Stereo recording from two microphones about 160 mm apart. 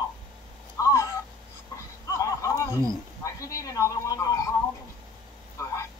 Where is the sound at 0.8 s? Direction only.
20° left (ahead or behind).